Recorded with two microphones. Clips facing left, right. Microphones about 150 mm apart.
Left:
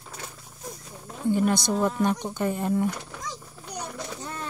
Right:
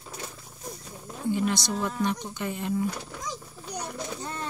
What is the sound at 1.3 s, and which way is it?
Speech, 50° left (ahead or behind).